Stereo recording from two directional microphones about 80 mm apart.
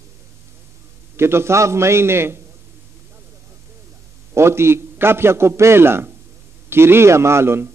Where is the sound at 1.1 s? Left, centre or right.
Right.